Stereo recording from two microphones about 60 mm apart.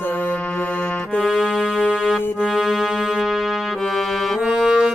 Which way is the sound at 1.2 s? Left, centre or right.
Centre.